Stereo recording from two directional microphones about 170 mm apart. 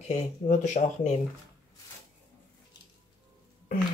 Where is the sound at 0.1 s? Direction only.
45° left (ahead or behind).